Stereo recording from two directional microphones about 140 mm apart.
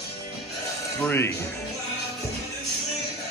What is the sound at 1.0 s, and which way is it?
Speech, 15° left (ahead or behind).